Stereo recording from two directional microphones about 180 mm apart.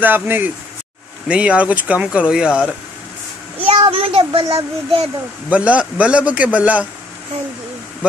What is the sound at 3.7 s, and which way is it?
A child's voice, 30° right (ahead or behind).